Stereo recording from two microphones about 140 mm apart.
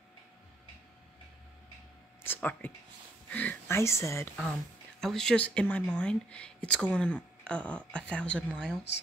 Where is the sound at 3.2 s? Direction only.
10° left (ahead or behind).